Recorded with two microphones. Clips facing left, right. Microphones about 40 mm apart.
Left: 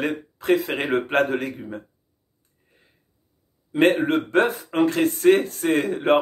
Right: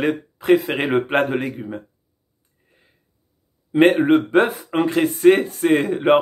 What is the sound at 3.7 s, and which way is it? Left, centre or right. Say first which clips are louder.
Speech: right 5 dB; right.